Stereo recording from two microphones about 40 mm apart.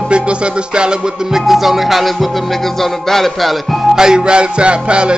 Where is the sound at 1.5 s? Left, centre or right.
Centre.